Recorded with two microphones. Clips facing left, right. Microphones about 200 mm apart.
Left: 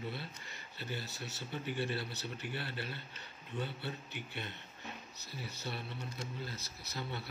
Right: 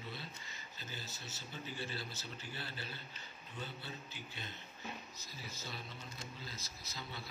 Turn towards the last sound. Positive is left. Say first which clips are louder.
# left 6 dB
turn(degrees=60)  # may be behind; listen again after turning